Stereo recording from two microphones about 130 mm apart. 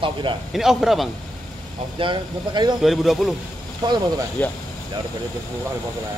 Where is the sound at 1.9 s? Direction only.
40° right (ahead or behind).